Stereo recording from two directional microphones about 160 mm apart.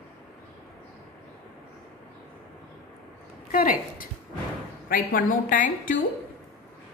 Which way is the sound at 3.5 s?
60° left (ahead or behind).